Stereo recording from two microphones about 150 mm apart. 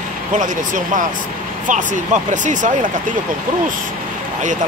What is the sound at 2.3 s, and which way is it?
Speech, 55° right (ahead or behind).